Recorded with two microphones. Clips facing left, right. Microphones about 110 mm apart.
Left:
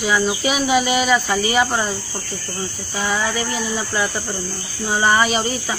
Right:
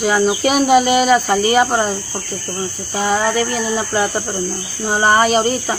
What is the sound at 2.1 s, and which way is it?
Speech, 25° right (ahead or behind).